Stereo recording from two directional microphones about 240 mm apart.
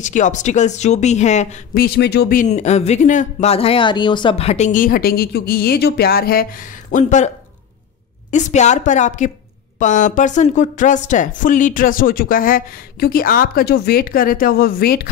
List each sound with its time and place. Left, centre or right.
0.0 s speech: left
8.3 s speech: left